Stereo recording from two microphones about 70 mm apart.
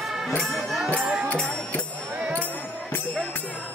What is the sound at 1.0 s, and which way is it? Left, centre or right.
Music, centre.